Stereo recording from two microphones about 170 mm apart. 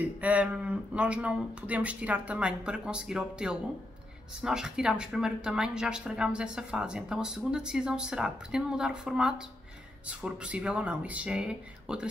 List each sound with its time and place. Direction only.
0.0 s a woman's voice: 10° right (ahead or behind)